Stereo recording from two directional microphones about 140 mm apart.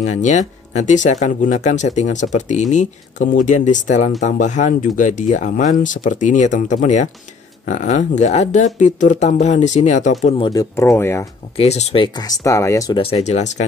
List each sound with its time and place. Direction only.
0.0 s speech: 60° left (ahead or behind)
10.2 s speech: 40° left (ahead or behind)
10.5 s speech: 25° left (ahead or behind)
11.5 s speech: 50° left (ahead or behind)
12.2 s speech: 25° left (ahead or behind)
12.9 s speech: 40° left (ahead or behind)